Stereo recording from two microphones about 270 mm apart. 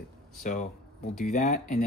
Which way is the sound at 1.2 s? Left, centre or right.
Left.